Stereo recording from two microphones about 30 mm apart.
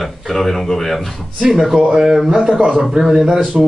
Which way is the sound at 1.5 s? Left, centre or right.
Centre.